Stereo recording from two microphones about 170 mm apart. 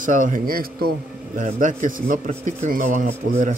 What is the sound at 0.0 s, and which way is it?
A man's voice, 50° right (ahead or behind).